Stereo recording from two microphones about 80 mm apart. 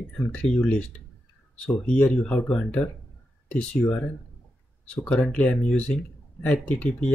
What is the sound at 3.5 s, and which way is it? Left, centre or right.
Speech, centre.